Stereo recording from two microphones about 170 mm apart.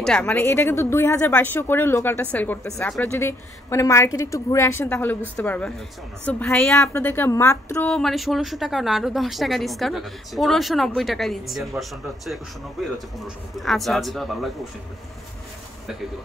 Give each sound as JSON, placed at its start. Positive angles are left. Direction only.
{"t": 0.0, "sound": "speech", "side_deg": 5}
{"t": 7.9, "sound": "speech", "side_deg": 0}
{"t": 12.8, "sound": "speech", "side_deg": 0}